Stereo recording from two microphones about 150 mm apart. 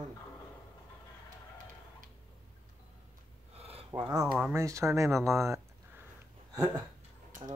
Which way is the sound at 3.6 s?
40° right (ahead or behind).